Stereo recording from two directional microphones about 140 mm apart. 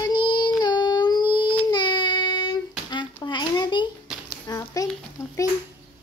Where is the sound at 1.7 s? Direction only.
30° left (ahead or behind).